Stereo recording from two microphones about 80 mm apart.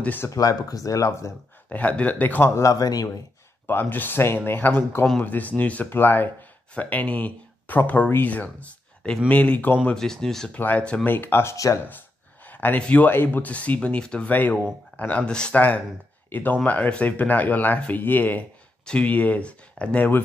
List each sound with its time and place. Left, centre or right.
0.0 s speech: left
0.3 s speech: left
1.7 s speech: centre
2.5 s speech: left
3.6 s speech: left
9.9 s speech: centre
10.5 s speech: centre
11.5 s speech: left
12.4 s speech: left
16.3 s speech: left